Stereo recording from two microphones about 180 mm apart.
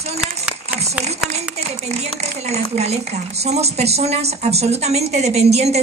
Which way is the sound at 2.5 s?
35° right (ahead or behind).